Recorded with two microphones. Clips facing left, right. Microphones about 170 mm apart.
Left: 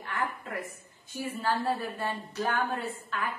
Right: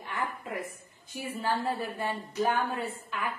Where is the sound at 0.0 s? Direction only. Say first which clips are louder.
Left 1 dB; 15° right (ahead or behind).